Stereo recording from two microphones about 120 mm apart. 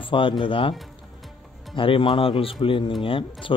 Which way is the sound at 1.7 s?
45° left (ahead or behind).